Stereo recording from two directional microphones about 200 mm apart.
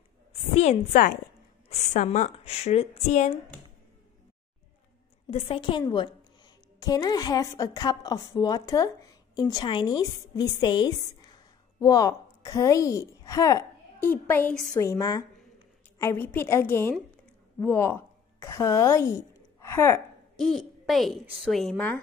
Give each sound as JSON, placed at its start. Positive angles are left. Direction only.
{"t": 0.3, "sound": "a woman's voice", "side_deg": 35}
{"t": 5.3, "sound": "a woman's voice", "side_deg": 25}
{"t": 20.3, "sound": "a woman's voice", "side_deg": 0}